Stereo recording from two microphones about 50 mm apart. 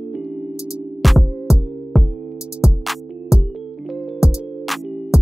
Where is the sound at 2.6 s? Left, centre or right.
Centre.